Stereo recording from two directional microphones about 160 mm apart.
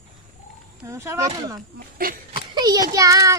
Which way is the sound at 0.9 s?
20° right (ahead or behind).